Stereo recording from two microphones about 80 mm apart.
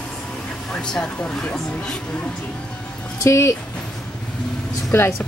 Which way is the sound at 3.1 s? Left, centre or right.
Left.